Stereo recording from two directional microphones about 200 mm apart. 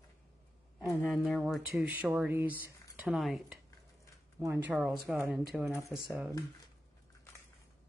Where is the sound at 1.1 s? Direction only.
Centre (ahead or behind).